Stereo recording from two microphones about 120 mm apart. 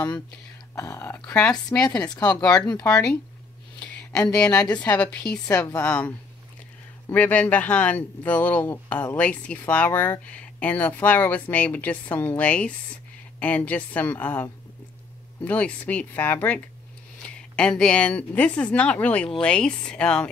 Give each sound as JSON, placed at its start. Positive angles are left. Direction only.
{"t": 0.7, "sound": "speech", "side_deg": 25}
{"t": 2.0, "sound": "speech", "side_deg": 35}
{"t": 2.8, "sound": "speech", "side_deg": 10}
{"t": 3.8, "sound": "a sound", "side_deg": 10}
{"t": 4.5, "sound": "speech", "side_deg": 10}